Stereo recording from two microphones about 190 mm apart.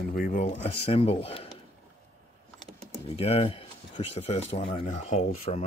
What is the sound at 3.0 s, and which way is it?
Speech, 30° left (ahead or behind).